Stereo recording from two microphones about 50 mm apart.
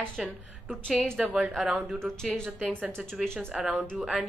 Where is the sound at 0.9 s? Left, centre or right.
Centre.